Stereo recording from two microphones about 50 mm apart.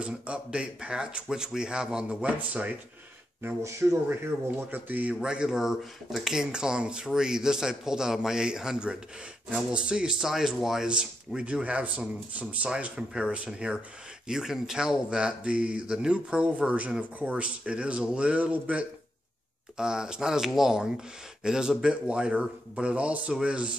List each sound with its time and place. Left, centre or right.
0.0 s speech: right
2.2 s speech: right
3.4 s speech: right
5.2 s speech: centre
10.2 s speech: centre
10.9 s speech: centre
19.8 s speech: centre